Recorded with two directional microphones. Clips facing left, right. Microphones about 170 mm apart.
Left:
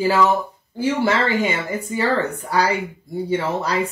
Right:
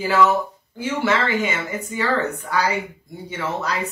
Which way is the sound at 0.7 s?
35° left (ahead or behind).